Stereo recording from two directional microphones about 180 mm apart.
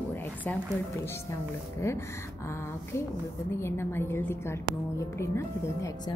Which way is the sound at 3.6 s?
15° left (ahead or behind).